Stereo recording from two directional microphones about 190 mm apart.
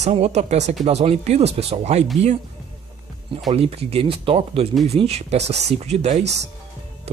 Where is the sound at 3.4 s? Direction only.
30° right (ahead or behind).